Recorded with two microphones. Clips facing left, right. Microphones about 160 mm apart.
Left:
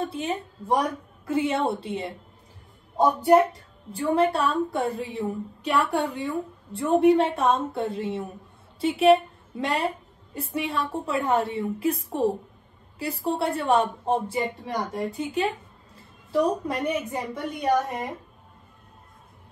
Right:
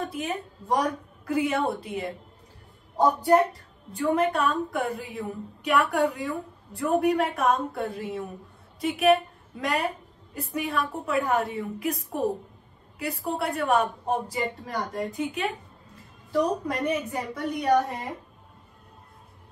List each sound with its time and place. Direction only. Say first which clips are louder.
0.0 s a woman's voice: left 2 dB; 30° left (ahead or behind)
3.9 s a woman's voice: left 2 dB; 35° left (ahead or behind)
14.6 s a woman's voice: left 2 dB; 15° left (ahead or behind)
15.0 s speech: left 3 dB; 35° left (ahead or behind)
16.6 s a woman's voice: even; 25° left (ahead or behind)